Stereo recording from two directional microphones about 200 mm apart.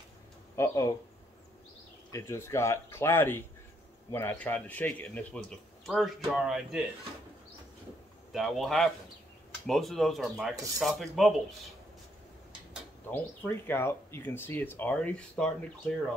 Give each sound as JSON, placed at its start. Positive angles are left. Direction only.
{"t": 0.6, "sound": "speech", "side_deg": 15}
{"t": 2.1, "sound": "speech", "side_deg": 15}
{"t": 8.3, "sound": "speech", "side_deg": 0}
{"t": 13.1, "sound": "speech", "side_deg": 10}